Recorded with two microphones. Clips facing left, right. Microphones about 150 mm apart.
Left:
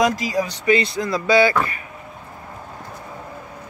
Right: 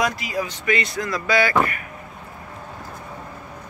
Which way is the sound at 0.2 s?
35° left (ahead or behind).